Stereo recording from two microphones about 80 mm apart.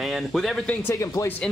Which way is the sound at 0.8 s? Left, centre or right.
Left.